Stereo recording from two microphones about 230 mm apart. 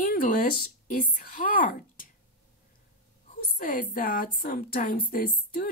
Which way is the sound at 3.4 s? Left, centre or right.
Left.